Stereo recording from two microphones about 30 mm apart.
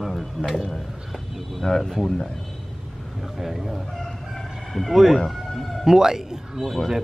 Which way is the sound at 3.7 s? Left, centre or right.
Centre.